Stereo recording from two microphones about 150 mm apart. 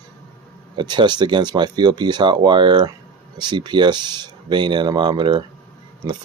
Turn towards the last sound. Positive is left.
turn(degrees=-25)  # may be behind; listen again after turning